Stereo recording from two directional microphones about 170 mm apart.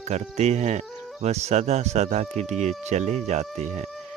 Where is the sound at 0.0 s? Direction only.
40° right (ahead or behind).